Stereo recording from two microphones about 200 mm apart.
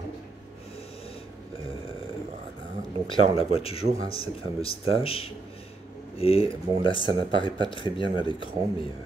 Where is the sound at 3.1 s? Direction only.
30° left (ahead or behind).